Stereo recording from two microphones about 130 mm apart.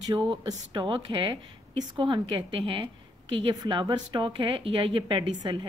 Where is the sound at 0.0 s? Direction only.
35° right (ahead or behind).